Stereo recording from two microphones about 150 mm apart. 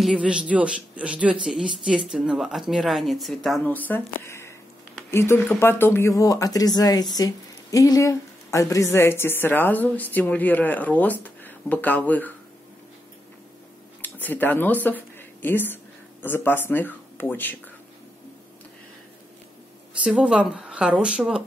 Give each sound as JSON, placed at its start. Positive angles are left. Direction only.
{"t": 0.0, "sound": "speech", "side_deg": -5}
{"t": 3.6, "sound": "speech", "side_deg": 10}
{"t": 4.2, "sound": "a sound", "side_deg": 15}
{"t": 5.1, "sound": "speech", "side_deg": 15}
{"t": 14.0, "sound": "speech", "side_deg": 10}
{"t": 20.0, "sound": "speech", "side_deg": -5}